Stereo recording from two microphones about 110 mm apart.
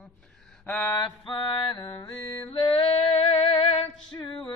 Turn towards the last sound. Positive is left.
turn(degrees=65)  # may be behind; listen again after turning